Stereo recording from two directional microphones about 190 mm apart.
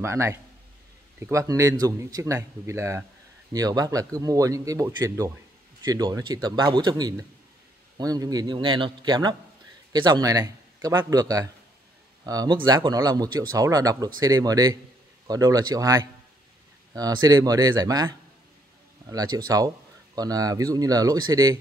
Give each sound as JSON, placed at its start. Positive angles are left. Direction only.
{"t": 0.0, "sound": "a man's voice", "side_deg": -15}